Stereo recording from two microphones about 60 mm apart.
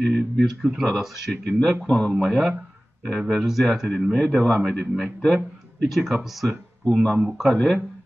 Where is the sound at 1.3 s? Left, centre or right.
Centre.